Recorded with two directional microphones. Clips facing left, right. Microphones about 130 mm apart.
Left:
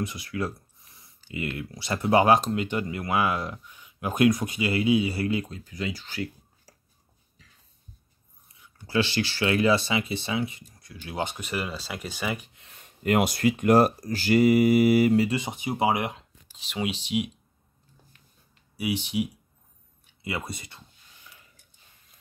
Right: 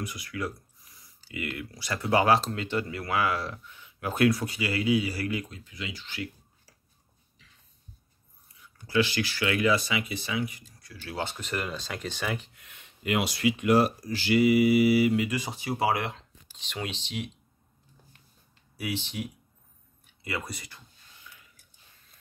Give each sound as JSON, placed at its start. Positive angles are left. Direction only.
{"t": 0.0, "sound": "speech", "side_deg": 25}
{"t": 8.8, "sound": "speech", "side_deg": 30}
{"t": 12.5, "sound": "a sound", "side_deg": 30}
{"t": 12.8, "sound": "speech", "side_deg": 45}
{"t": 15.2, "sound": "speech", "side_deg": 25}
{"t": 16.5, "sound": "speech", "side_deg": 5}
{"t": 18.8, "sound": "speech", "side_deg": 15}
{"t": 20.2, "sound": "speech", "side_deg": 20}